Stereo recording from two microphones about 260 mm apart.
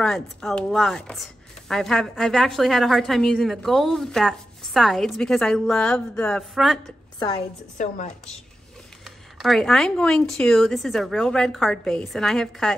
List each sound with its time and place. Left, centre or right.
0.0 s speech: centre
7.7 s speech: left
9.0 s speech: centre